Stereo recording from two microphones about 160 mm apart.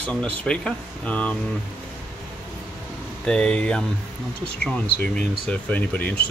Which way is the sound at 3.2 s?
5° left (ahead or behind).